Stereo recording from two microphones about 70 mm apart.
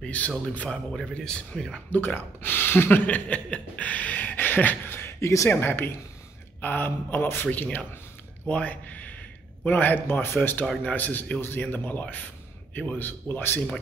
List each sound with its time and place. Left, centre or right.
0.0 s a man's voice: left
1.9 s speech: left
3.3 s a sound: centre
5.5 s speech: left